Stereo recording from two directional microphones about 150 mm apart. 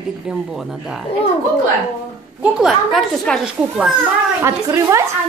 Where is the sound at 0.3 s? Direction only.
5° right (ahead or behind).